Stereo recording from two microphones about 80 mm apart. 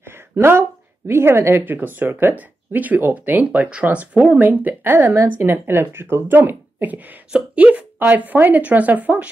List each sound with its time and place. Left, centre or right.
0.0 s speech: right